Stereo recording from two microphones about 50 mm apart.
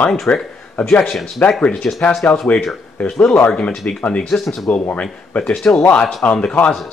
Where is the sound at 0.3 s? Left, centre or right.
Left.